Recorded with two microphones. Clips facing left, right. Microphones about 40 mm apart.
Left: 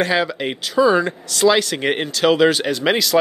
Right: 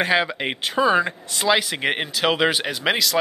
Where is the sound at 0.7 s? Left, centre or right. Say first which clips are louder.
Left 4 dB; right.